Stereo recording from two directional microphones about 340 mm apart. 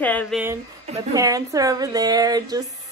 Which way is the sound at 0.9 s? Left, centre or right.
Centre.